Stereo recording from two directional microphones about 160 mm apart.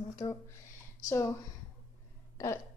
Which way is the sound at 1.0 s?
20° left (ahead or behind).